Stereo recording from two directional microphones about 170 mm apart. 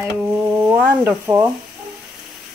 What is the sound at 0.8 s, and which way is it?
Speech, 15° right (ahead or behind).